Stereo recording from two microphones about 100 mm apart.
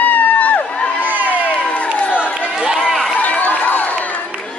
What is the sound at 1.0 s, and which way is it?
Crowd, 20° right (ahead or behind).